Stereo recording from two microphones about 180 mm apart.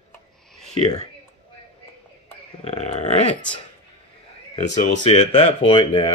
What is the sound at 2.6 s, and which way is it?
Speech, 35° left (ahead or behind).